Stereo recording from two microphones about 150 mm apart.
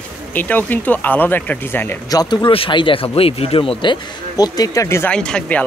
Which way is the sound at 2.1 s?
30° left (ahead or behind).